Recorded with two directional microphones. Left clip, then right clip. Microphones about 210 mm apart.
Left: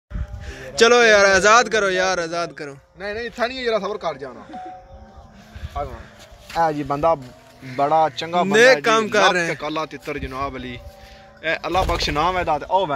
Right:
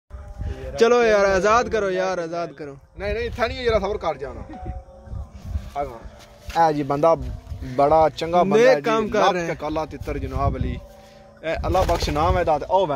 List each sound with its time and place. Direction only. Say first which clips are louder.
0.5 s a man's voice: left 3 dB; centre (ahead or behind)
3.0 s a man's voice: even; 35° right (ahead or behind)
6.5 s speech: right 1 dB; 45° right (ahead or behind)
8.8 s a man's voice: left 4 dB; centre (ahead or behind)
9.5 s speech: left 1 dB; 45° right (ahead or behind)